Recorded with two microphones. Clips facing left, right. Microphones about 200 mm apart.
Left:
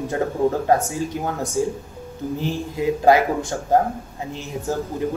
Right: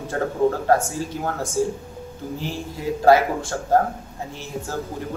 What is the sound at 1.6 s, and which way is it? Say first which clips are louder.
Speech: right 1 dB; 15° left (ahead or behind).